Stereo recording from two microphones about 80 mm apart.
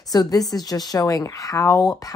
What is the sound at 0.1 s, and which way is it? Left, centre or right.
A woman's voice, left.